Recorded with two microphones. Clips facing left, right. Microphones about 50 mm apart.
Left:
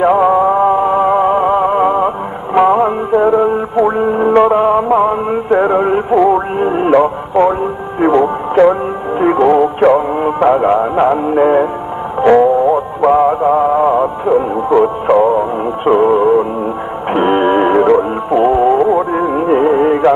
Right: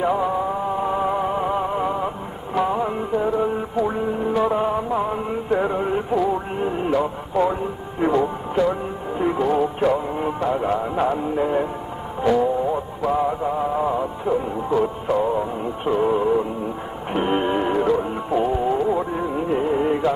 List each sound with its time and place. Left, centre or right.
0.0 s music: left